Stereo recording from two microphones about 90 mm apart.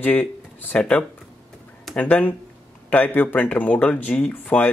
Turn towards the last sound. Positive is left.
turn(degrees=20)  # may be behind; listen again after turning